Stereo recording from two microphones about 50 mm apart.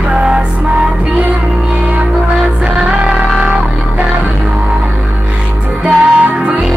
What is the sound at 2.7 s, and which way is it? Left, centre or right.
Music, centre.